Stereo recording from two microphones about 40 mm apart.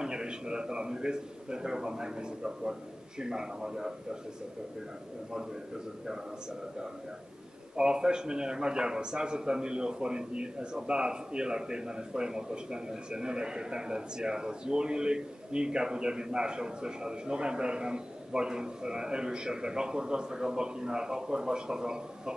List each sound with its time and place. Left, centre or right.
0.0 s a man's voice: centre
7.7 s a man's voice: right